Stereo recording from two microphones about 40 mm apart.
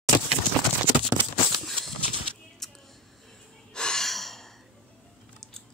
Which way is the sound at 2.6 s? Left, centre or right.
Centre.